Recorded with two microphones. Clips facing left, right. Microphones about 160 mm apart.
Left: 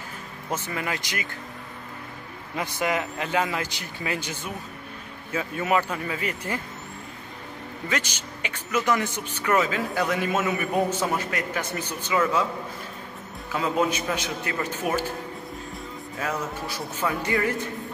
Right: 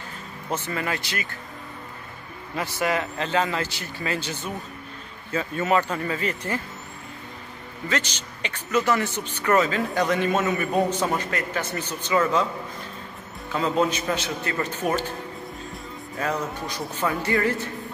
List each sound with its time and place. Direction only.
0.5 s speech: 15° left (ahead or behind)
2.5 s speech: 15° left (ahead or behind)
7.9 s speech: 10° left (ahead or behind)
13.5 s speech: 10° left (ahead or behind)
16.2 s speech: 5° left (ahead or behind)